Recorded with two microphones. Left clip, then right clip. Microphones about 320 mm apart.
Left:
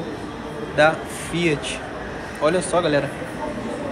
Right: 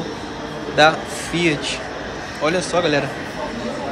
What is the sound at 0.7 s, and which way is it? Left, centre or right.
Speech, centre.